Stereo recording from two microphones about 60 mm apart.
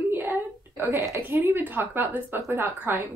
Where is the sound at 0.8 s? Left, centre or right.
Right.